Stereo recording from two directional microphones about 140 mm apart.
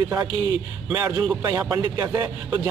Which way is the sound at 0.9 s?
15° right (ahead or behind).